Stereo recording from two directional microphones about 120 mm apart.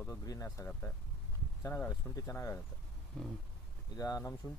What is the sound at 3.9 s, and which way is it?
Speech, 25° left (ahead or behind).